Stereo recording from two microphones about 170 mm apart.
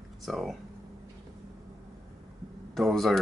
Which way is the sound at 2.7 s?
Centre (ahead or behind).